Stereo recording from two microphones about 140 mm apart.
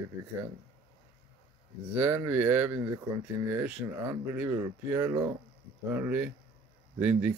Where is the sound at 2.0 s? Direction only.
20° right (ahead or behind).